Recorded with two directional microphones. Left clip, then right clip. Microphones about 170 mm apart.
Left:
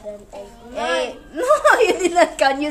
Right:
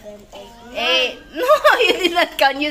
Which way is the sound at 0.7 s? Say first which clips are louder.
Right 4 dB; 10° left (ahead or behind).